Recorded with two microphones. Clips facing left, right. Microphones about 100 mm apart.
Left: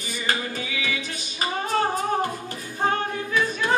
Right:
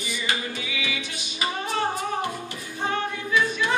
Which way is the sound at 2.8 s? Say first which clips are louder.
Left 3 dB; 40° left (ahead or behind).